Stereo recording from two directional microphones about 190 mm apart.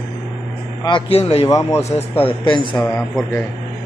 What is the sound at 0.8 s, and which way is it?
Speech, 25° left (ahead or behind).